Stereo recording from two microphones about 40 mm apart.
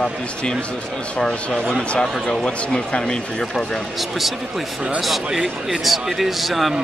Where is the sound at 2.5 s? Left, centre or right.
Left.